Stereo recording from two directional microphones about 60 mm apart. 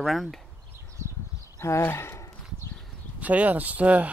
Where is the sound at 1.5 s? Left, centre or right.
Left.